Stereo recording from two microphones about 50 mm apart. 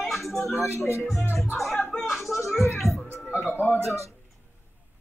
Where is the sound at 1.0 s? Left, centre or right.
Centre.